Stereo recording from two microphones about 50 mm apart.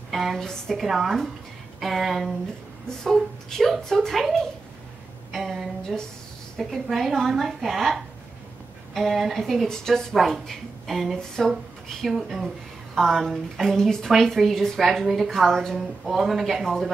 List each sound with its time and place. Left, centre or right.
0.1 s a sound: centre
0.4 s a woman's voice: centre
3.0 s speech: centre
5.3 s a sound: centre
5.9 s speech: centre
6.6 s a woman's voice: centre
13.7 s a woman's voice: centre